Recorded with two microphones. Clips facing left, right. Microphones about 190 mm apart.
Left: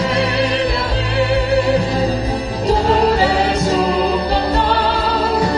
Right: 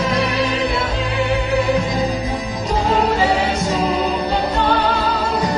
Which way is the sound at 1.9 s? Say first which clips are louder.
Left 2 dB; 35° left (ahead or behind).